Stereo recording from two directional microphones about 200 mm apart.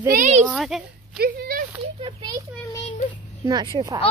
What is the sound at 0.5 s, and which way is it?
Speech, centre (ahead or behind).